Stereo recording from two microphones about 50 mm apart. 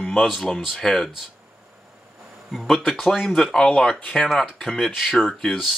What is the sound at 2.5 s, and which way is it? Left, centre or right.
Speech, centre.